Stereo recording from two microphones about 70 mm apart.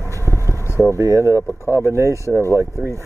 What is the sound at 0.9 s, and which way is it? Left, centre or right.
Speech, right.